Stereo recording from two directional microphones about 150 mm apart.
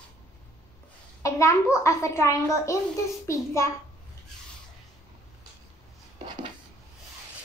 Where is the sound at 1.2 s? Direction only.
20° left (ahead or behind).